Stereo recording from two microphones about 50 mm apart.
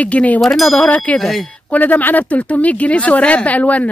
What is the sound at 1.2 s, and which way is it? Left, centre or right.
Speech, centre.